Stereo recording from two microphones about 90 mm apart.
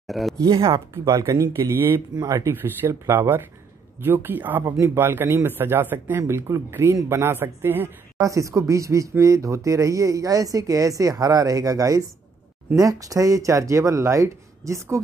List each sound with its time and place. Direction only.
0.0 s speech: centre (ahead or behind)
0.4 s speech: 65° right (ahead or behind)
0.9 s speech: 30° right (ahead or behind)
2.1 s speech: 45° right (ahead or behind)
2.4 s speech: 25° right (ahead or behind)
4.6 s speech: 35° right (ahead or behind)
8.2 s speech: 40° right (ahead or behind)